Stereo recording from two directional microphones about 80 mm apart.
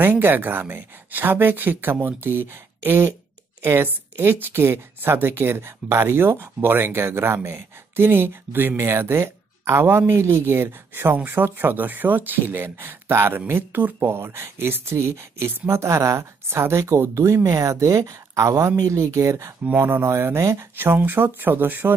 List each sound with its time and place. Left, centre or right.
0.0 s speech: right